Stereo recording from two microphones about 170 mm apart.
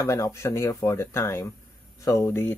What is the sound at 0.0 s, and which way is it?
Speech, 20° left (ahead or behind).